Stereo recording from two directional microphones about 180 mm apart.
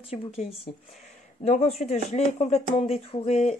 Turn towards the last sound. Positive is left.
turn(degrees=35)  # may be behind; listen again after turning